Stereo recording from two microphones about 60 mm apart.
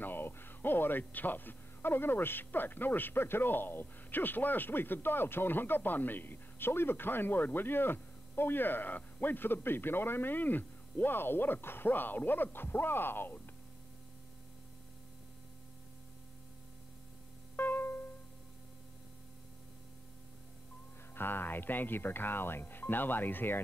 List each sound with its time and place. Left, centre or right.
0.0 s speech: left
17.6 s music: left
21.1 s speech: left